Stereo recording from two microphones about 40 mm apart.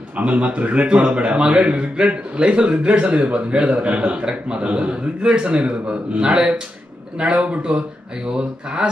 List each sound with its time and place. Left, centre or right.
0.2 s a man's voice: right